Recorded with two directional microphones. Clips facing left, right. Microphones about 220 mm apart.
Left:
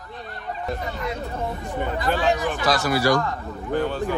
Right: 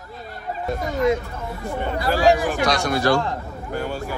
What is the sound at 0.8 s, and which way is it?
Speech, 45° right (ahead or behind).